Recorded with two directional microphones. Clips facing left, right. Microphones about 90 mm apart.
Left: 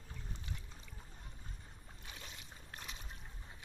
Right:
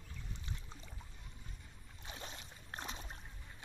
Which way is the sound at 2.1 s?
35° right (ahead or behind).